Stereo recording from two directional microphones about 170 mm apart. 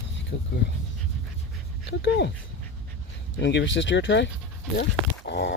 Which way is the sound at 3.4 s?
90° left.